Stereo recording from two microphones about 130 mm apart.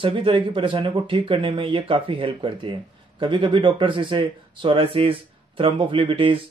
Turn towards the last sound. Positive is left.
turn(degrees=-40)  # may be behind; listen again after turning